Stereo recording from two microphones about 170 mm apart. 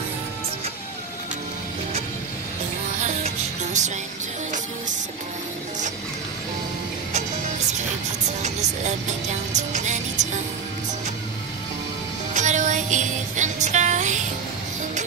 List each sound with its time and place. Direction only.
3.3 s music: 45° right (ahead or behind)
8.4 s music: 45° right (ahead or behind)
12.4 s music: 45° right (ahead or behind)